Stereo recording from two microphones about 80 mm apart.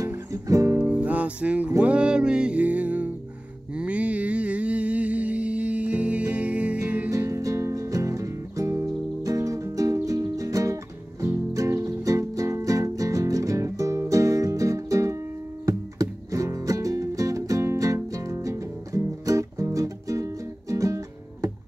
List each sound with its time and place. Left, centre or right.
0.3 s music: right
0.8 s music: centre
7.1 s music: right